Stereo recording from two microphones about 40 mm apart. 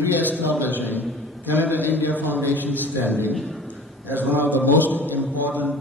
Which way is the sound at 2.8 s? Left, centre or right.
Right.